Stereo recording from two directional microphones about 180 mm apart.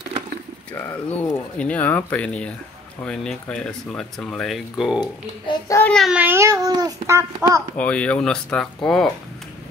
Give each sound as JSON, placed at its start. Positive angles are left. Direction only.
{"t": 0.7, "sound": "speech", "side_deg": 10}
{"t": 5.0, "sound": "a child's voice", "side_deg": 20}
{"t": 5.9, "sound": "speech", "side_deg": 0}
{"t": 7.7, "sound": "speech", "side_deg": 5}